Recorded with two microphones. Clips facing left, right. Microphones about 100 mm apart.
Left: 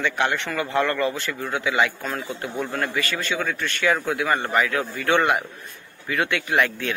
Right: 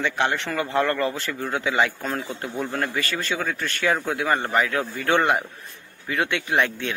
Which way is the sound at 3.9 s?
25° right (ahead or behind).